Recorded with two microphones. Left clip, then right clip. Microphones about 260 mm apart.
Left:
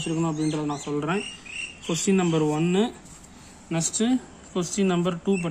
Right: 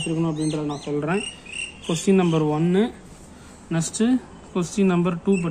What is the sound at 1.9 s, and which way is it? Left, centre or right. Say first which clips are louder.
Speech: right 3 dB; centre.